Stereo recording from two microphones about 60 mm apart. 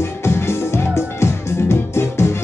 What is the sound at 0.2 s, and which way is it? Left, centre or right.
Music, left.